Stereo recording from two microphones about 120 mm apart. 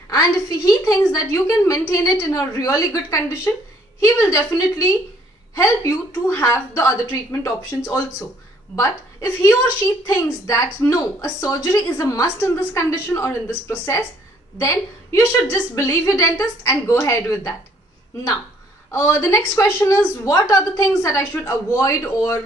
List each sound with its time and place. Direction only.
0.1 s a woman's voice: 30° left (ahead or behind)
18.9 s a woman's voice: 25° left (ahead or behind)